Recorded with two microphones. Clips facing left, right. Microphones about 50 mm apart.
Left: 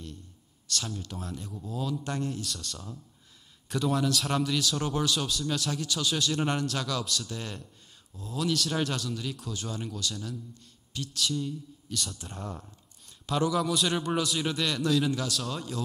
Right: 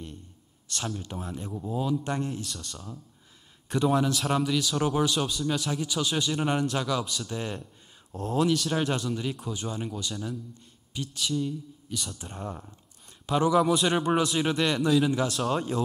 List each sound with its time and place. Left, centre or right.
0.9 s a man's voice: centre
3.6 s a man's voice: right
4.2 s speech: centre
8.1 s speech: right
8.5 s speech: centre
8.8 s a man's voice: right
15.5 s speech: right